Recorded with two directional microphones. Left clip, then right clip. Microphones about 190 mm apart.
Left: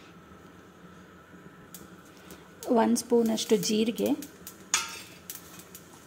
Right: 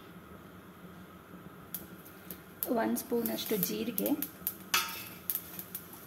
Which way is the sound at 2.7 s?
40° left (ahead or behind).